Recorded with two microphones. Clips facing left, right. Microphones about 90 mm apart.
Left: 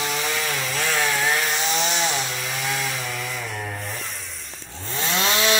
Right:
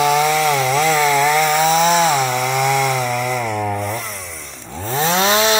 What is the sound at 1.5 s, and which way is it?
Chainsaw, 50° right (ahead or behind).